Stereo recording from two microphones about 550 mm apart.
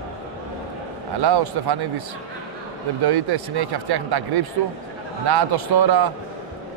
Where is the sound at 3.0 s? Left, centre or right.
Right.